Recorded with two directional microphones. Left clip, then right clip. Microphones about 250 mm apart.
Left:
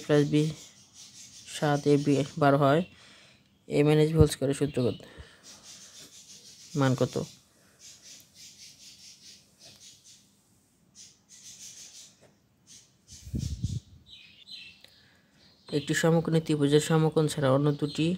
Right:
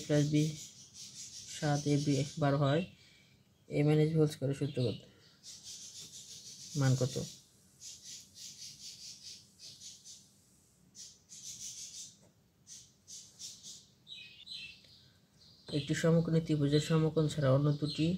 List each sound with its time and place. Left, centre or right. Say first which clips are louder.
0.1 s speech: left 8 dB; left
1.5 s speech: left 9 dB; left
6.8 s speech: left 8 dB; left
15.7 s speech: left 6 dB; left